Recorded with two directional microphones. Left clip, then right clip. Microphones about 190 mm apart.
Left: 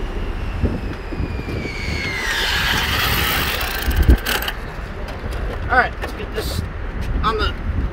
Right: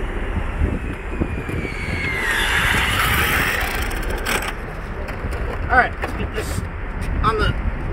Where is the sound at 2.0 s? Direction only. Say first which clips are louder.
Right 1 dB; 20° left (ahead or behind).